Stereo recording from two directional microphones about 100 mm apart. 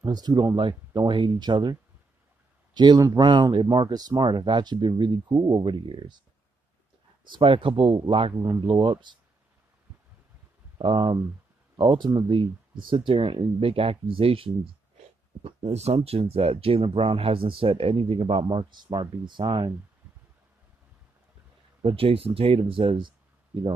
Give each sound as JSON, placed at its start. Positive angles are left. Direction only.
{"t": 0.0, "sound": "speech", "side_deg": -40}
{"t": 5.3, "sound": "speech", "side_deg": -35}
{"t": 5.6, "sound": "speech", "side_deg": -55}
{"t": 7.2, "sound": "speech", "side_deg": -55}
{"t": 8.4, "sound": "speech", "side_deg": -45}
{"t": 10.8, "sound": "speech", "side_deg": -55}
{"t": 15.4, "sound": "speech", "side_deg": -90}
{"t": 18.4, "sound": "speech", "side_deg": -50}
{"t": 21.8, "sound": "speech", "side_deg": -70}